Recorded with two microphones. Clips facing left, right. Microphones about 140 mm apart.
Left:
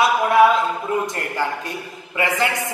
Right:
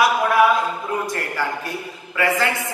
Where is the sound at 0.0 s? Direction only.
25° left (ahead or behind).